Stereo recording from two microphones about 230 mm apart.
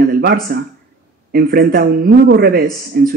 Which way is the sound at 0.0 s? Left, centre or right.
Right.